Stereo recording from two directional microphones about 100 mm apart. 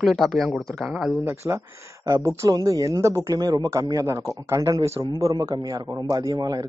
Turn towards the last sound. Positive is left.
turn(degrees=-40)  # may be behind; listen again after turning